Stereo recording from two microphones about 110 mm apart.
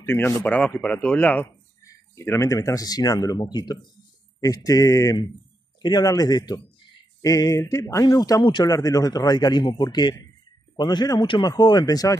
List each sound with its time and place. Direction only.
0.4 s speech: 10° left (ahead or behind)
2.1 s speech: 25° left (ahead or behind)